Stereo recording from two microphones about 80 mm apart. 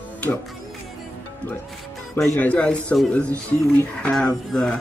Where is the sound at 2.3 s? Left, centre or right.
Centre.